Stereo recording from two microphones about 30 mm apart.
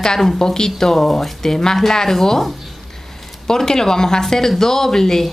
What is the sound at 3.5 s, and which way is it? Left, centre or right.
A woman's voice, centre.